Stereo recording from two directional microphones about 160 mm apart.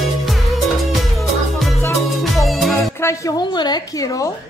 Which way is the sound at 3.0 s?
20° left (ahead or behind).